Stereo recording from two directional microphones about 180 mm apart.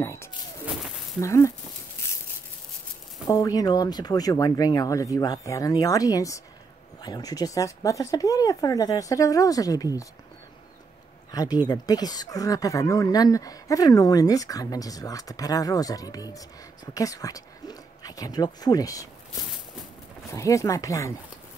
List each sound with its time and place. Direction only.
0.0 s a sound: 15° left (ahead or behind)
0.7 s a sound: centre (ahead or behind)
1.2 s speech: 15° left (ahead or behind)
3.3 s speech: 20° left (ahead or behind)
11.3 s speech: 20° left (ahead or behind)
20.2 s speech: 15° left (ahead or behind)